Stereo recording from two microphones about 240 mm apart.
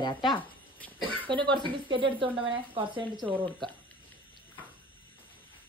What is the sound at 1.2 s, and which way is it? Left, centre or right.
Speech, centre.